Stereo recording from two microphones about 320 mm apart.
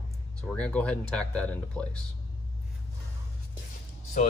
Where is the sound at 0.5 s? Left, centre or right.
Centre.